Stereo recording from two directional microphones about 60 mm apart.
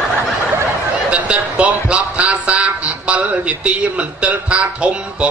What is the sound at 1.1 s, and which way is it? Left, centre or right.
A man's voice, right.